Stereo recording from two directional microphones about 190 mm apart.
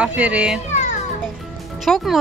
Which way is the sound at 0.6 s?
40° left (ahead or behind).